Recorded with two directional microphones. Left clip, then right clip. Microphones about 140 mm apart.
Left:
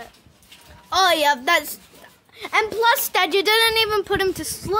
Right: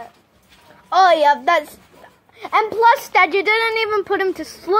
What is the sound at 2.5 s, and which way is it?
Speech, 10° left (ahead or behind).